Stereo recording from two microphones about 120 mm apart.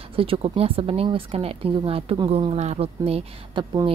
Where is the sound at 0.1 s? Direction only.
50° right (ahead or behind).